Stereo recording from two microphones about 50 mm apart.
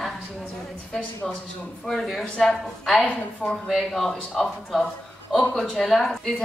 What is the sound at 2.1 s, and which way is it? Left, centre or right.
Speech, centre.